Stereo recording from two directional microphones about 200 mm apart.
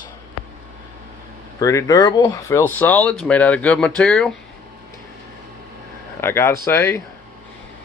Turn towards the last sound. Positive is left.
turn(degrees=15)  # may be behind; listen again after turning